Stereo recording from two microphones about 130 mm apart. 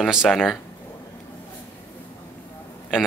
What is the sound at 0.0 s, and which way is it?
Speech, 5° right (ahead or behind).